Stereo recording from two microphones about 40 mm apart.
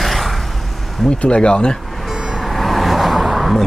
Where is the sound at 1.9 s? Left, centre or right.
Centre.